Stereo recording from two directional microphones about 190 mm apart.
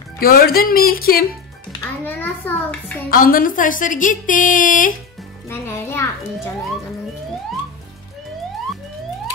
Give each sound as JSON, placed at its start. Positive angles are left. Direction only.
{"t": 0.2, "sound": "a woman's voice", "side_deg": 50}
{"t": 1.7, "sound": "music", "side_deg": 10}
{"t": 3.1, "sound": "a woman's voice", "side_deg": 50}
{"t": 5.5, "sound": "children playing", "side_deg": 10}